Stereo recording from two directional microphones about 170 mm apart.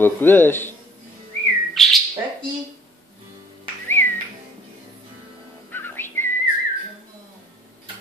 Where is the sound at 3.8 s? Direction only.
10° left (ahead or behind).